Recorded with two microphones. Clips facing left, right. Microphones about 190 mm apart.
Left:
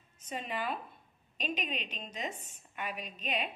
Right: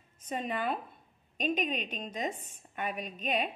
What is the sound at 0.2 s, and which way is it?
A woman's voice, 50° right (ahead or behind).